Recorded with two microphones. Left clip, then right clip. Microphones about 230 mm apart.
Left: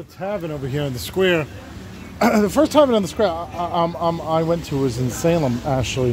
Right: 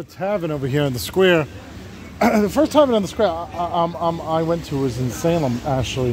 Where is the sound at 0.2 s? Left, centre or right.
Right.